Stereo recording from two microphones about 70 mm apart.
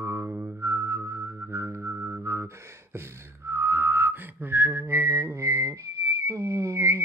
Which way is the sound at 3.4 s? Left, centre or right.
Right.